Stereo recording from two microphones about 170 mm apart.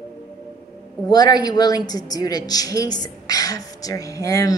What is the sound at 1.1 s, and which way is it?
A woman's voice, 25° left (ahead or behind).